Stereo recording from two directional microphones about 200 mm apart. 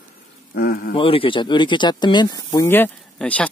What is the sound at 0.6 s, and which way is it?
Speech, 50° left (ahead or behind).